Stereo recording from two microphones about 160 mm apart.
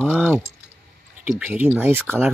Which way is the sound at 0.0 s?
5° right (ahead or behind).